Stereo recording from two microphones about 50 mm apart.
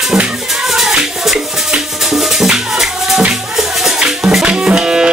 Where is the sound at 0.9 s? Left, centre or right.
Centre.